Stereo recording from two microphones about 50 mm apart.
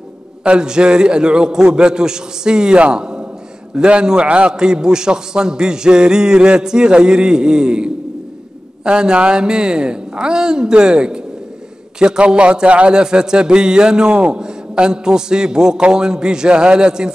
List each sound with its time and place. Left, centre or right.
0.4 s a man's voice: centre